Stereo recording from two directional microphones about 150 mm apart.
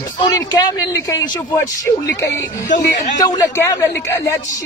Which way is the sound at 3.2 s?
25° left (ahead or behind).